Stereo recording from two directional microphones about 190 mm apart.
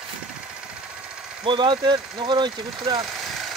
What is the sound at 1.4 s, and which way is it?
Speech, 25° right (ahead or behind).